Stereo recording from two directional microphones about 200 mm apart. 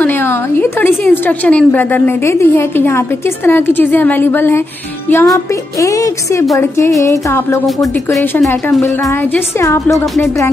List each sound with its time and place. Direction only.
0.0 s a woman's voice: 10° left (ahead or behind)
7.6 s speech: centre (ahead or behind)
9.0 s a woman's voice: 15° left (ahead or behind)